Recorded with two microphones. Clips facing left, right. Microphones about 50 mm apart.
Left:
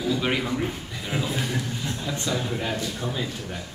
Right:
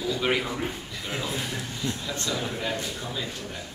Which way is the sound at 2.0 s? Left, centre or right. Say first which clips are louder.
Left 3 dB; centre.